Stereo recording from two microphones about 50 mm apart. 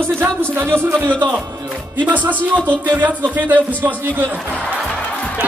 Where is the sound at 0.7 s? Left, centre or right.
Right.